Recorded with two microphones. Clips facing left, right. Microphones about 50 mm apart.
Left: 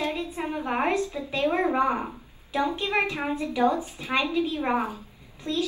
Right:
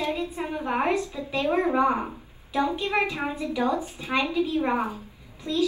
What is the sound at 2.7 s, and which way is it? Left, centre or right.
A woman's voice, left.